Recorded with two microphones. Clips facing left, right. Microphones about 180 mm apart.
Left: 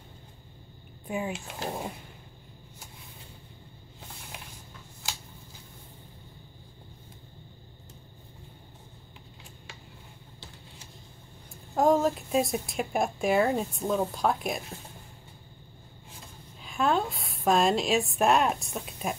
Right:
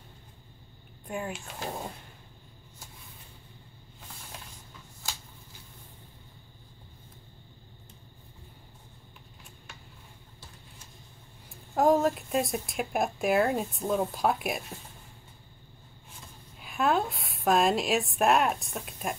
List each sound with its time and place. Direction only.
1.0 s speech: 5° left (ahead or behind)
11.7 s speech: centre (ahead or behind)
16.6 s a woman's voice: 5° right (ahead or behind)